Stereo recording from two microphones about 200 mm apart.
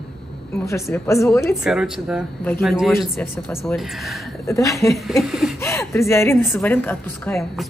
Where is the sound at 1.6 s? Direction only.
Centre (ahead or behind).